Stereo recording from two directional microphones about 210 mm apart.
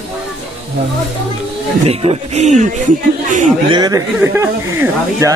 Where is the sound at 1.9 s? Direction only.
30° right (ahead or behind).